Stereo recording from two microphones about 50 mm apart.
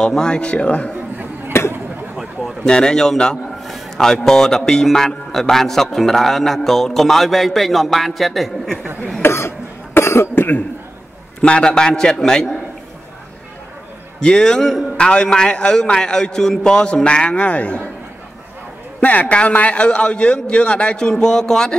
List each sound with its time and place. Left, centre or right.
0.0 s a man's voice: centre
1.5 s a sound: left
2.6 s a man's voice: centre
9.2 s cough: left
11.4 s a man's voice: centre
14.2 s a man's voice: centre
18.9 s a man's voice: left; by 21.7 s centre